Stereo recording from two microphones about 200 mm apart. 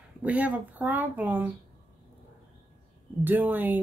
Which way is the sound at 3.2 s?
10° right (ahead or behind).